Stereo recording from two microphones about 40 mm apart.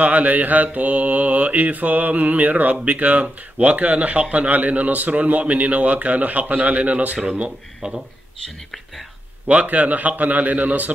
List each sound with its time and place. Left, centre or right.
0.0 s mantra: right
9.5 s mantra: right